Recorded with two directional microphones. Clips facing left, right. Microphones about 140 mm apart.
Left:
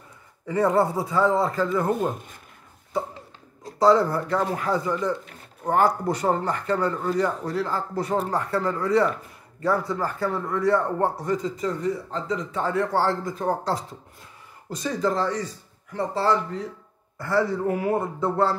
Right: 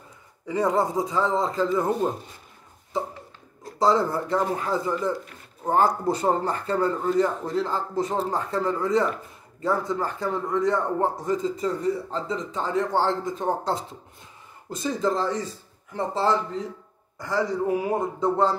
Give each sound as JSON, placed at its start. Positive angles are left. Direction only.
{"t": 0.5, "sound": "speech", "side_deg": -15}
{"t": 3.8, "sound": "speech", "side_deg": -25}
{"t": 14.8, "sound": "speech", "side_deg": -25}